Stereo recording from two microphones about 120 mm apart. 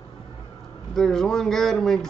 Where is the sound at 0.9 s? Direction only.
5° left (ahead or behind).